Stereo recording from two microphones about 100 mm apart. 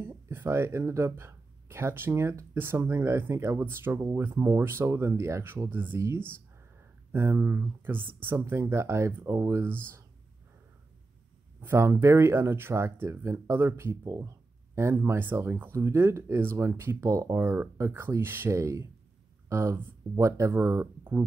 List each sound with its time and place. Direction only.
0.0 s speech: 20° right (ahead or behind)
11.6 s speech: 25° right (ahead or behind)